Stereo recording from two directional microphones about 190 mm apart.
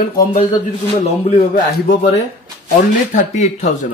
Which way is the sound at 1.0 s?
35° left (ahead or behind).